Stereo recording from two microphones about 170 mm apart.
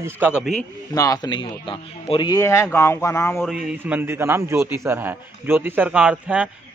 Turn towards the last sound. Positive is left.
turn(degrees=-10)  # may be behind; listen again after turning